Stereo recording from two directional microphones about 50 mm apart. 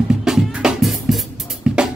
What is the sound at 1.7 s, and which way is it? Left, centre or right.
Drum kit, centre.